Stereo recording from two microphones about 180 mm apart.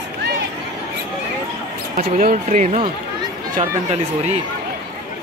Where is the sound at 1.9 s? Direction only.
45° right (ahead or behind).